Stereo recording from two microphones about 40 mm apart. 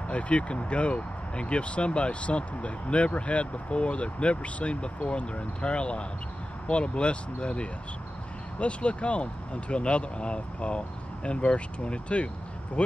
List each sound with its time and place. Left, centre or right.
0.1 s speech: left